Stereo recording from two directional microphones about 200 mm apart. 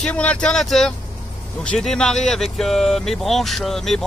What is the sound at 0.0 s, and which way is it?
Speech, 5° left (ahead or behind).